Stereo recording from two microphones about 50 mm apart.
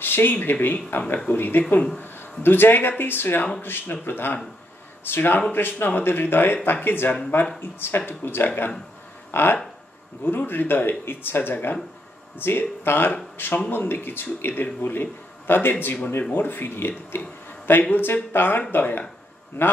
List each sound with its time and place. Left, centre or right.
0.0 s a man's voice: left
17.2 s a sound: left
17.9 s a man's voice: left